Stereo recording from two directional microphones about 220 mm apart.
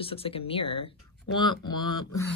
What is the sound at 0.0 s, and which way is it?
Speech, 25° left (ahead or behind).